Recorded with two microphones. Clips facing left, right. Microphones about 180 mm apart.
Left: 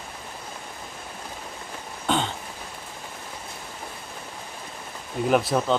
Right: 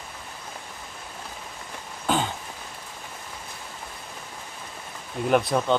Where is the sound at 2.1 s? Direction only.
5° right (ahead or behind).